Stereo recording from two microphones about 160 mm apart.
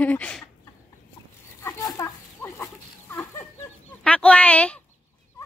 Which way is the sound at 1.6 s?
20° left (ahead or behind).